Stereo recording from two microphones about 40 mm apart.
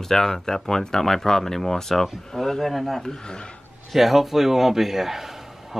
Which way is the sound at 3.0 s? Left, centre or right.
Left.